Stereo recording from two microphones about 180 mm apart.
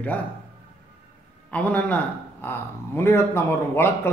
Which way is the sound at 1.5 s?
10° left (ahead or behind).